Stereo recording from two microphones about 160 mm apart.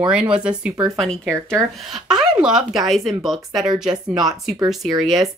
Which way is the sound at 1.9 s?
5° right (ahead or behind).